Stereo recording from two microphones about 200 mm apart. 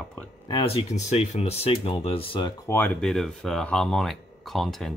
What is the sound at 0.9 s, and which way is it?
Speech, 35° left (ahead or behind).